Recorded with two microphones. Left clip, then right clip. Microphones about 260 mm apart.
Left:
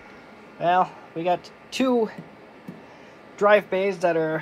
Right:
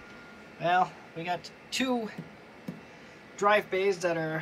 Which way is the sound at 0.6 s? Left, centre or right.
Centre.